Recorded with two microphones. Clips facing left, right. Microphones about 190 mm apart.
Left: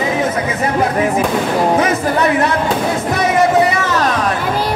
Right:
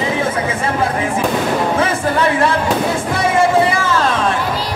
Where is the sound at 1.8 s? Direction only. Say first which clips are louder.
Left 1 dB; 30° right (ahead or behind).